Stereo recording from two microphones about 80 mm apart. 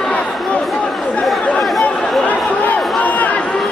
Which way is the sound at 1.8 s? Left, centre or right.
Centre.